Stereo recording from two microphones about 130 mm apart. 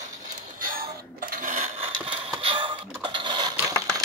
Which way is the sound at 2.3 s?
40° right (ahead or behind).